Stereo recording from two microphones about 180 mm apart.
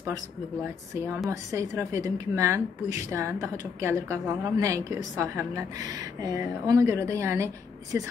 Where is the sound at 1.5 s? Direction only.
15° right (ahead or behind).